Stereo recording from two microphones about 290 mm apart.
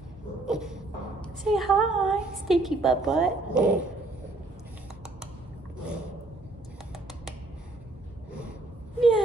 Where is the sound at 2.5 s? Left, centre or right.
Centre.